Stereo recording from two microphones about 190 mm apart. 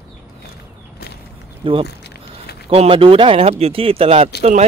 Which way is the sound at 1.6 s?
25° right (ahead or behind).